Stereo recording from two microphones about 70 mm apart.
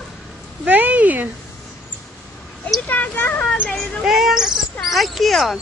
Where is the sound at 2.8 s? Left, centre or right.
Left.